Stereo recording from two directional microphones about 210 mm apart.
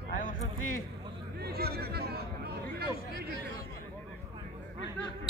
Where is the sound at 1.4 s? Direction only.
50° right (ahead or behind).